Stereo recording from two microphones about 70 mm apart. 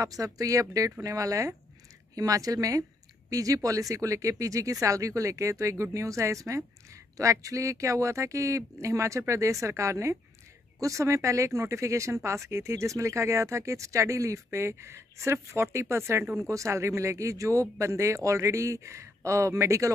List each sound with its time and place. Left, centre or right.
0.0 s speech: right